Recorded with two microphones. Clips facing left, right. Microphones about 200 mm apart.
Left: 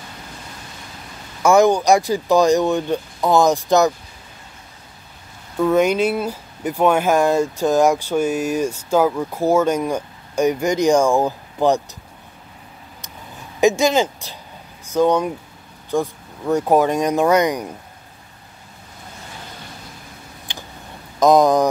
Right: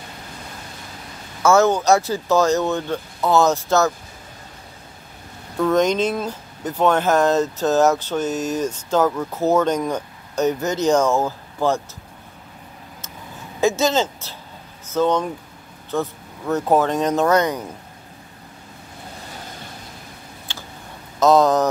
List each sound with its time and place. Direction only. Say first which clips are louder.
1.4 s speech: left 2 dB; 15° left (ahead or behind)
5.6 s speech: left 2 dB; 10° left (ahead or behind)
13.6 s speech: left 3 dB; 15° left (ahead or behind)
20.5 s a sound: left 2 dB; 15° left (ahead or behind)
21.2 s speech: left 2 dB; 15° left (ahead or behind)